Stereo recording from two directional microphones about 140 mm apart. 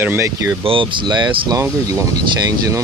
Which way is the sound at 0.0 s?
15° right (ahead or behind).